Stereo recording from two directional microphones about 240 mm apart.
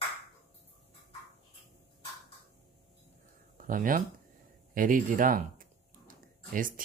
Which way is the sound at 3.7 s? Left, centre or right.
Right.